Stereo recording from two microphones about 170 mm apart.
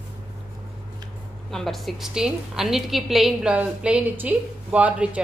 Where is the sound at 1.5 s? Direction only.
Centre (ahead or behind).